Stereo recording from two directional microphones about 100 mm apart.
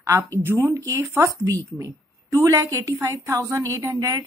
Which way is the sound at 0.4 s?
25° right (ahead or behind).